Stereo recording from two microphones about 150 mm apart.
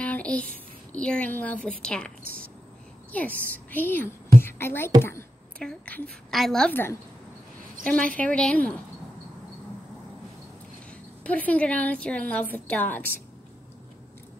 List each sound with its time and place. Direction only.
0.0 s a sound: 10° left (ahead or behind)
0.9 s a woman's voice: 5° left (ahead or behind)
4.4 s music: 15° left (ahead or behind)
5.6 s a woman's voice: 5° left (ahead or behind)
11.2 s a woman's voice: 10° left (ahead or behind)